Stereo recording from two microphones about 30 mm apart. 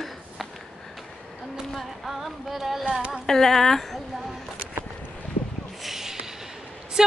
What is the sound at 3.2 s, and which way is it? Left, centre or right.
Speech, centre.